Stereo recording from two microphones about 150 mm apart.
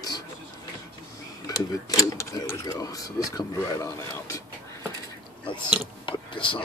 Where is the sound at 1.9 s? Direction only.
25° left (ahead or behind).